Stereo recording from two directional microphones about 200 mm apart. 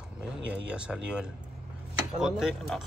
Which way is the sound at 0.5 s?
5° right (ahead or behind).